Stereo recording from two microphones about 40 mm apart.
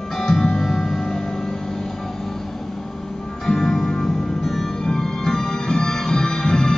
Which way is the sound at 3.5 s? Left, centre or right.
Centre.